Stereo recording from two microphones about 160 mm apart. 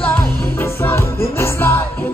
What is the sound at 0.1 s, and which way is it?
Music, 15° left (ahead or behind).